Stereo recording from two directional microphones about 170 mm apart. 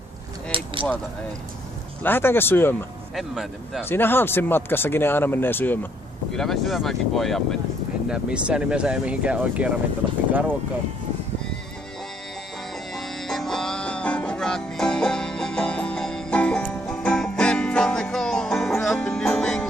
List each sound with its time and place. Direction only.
0.5 s keys jangling: 30° right (ahead or behind)
2.0 s speech: 10° left (ahead or behind)
3.2 s speech: centre (ahead or behind)
3.9 s speech: 10° left (ahead or behind); by 10.2 s 10° right (ahead or behind)
12.9 s music: centre (ahead or behind)